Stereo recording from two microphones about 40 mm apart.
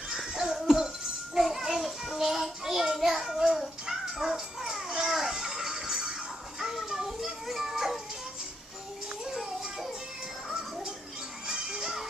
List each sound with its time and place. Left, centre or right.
0.3 s a sound: centre
0.7 s music: centre
1.4 s child singing: centre
3.9 s music: centre
6.6 s a sound: centre
9.2 s music: centre
11.4 s music: centre